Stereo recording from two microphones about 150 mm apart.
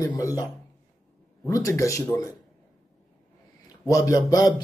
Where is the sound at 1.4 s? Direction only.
20° left (ahead or behind).